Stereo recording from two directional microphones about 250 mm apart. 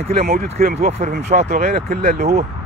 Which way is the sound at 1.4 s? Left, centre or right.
Right.